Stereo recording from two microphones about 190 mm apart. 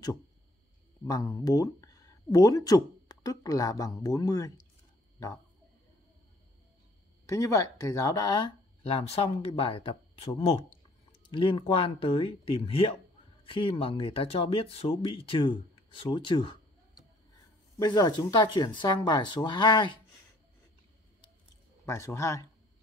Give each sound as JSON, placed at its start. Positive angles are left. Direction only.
{"t": 1.0, "sound": "speech", "side_deg": 20}
{"t": 7.2, "sound": "speech", "side_deg": 15}
{"t": 21.8, "sound": "speech", "side_deg": 15}